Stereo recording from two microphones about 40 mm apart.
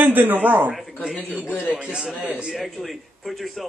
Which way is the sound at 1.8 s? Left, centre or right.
Right.